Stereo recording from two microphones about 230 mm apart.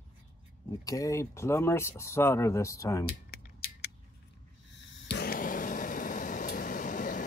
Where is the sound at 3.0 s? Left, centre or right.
Left.